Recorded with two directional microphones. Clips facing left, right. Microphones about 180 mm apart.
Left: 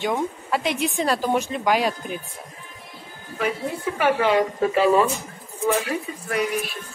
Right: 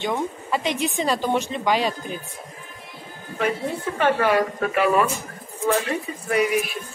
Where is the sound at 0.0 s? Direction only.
5° left (ahead or behind).